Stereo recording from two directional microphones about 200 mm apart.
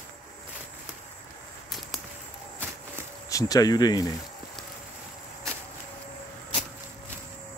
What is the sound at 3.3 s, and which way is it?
Speech, 15° left (ahead or behind).